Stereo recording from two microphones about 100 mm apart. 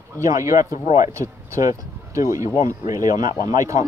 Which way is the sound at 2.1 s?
30° right (ahead or behind).